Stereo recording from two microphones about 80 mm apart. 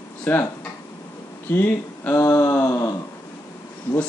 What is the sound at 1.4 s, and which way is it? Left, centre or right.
Speech, left.